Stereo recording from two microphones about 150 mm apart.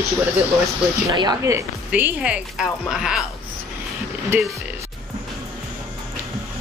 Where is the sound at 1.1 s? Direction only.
25° right (ahead or behind).